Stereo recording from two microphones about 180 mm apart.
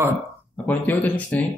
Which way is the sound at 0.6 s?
10° left (ahead or behind).